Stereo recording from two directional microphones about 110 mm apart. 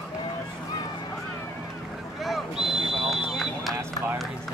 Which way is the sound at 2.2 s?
Centre (ahead or behind).